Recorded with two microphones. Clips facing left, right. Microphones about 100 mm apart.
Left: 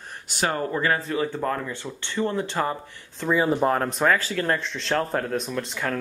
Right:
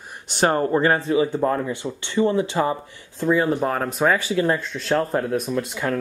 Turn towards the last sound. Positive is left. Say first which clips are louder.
# right 4 dB
turn(degrees=-5)  # may be behind; listen again after turning